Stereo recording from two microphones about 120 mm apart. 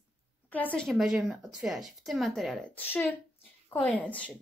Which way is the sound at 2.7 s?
15° left (ahead or behind).